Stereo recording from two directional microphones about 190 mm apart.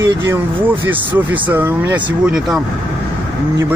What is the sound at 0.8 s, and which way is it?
Speech, 10° right (ahead or behind).